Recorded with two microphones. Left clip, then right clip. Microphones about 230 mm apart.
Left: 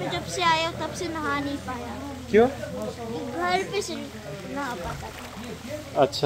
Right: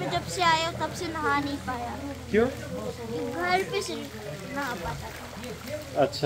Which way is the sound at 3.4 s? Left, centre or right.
Centre.